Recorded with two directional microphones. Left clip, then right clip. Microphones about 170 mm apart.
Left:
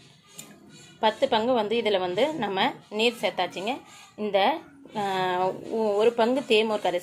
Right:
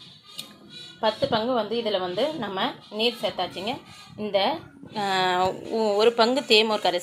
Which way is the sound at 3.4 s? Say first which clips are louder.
Left 1 dB; 5° left (ahead or behind).